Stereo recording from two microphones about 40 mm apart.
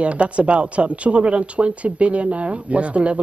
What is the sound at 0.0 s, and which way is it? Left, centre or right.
Speech, right.